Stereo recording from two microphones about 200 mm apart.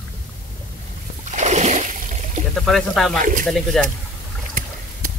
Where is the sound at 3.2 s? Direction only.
40° right (ahead or behind).